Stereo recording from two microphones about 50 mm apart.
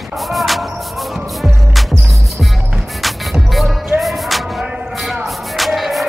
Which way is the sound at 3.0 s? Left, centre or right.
Centre.